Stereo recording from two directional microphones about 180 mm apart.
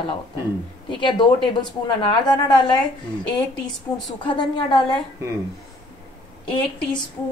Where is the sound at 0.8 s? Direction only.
25° left (ahead or behind).